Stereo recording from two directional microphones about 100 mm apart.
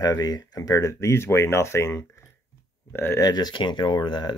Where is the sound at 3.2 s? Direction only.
45° left (ahead or behind).